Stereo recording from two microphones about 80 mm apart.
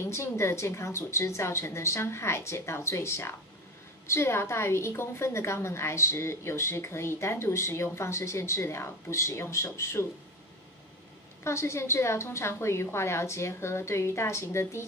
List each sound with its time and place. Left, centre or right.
0.0 s a woman's voice: left
11.4 s a woman's voice: left